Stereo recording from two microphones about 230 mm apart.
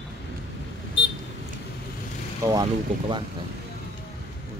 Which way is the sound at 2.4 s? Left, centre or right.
Centre.